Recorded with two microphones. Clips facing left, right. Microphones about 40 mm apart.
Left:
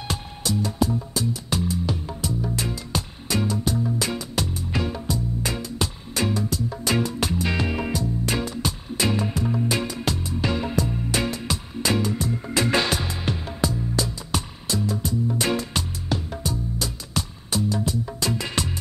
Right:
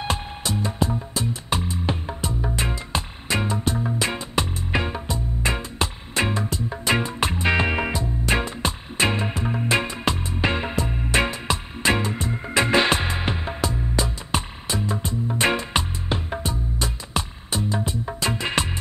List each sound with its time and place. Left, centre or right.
0.0 s music: right